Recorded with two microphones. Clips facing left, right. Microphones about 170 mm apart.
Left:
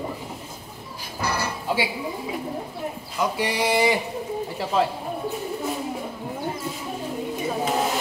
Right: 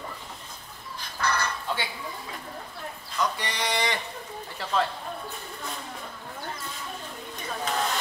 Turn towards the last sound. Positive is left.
turn(degrees=10)  # may be behind; listen again after turning